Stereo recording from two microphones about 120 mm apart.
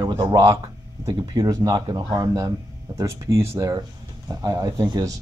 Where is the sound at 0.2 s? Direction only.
30° right (ahead or behind).